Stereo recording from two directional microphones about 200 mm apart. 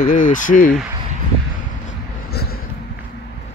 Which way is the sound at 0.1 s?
40° left (ahead or behind).